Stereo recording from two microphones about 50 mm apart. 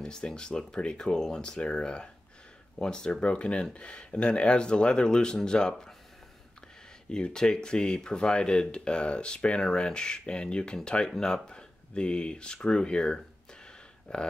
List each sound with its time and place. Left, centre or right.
0.0 s speech: centre
7.1 s speech: centre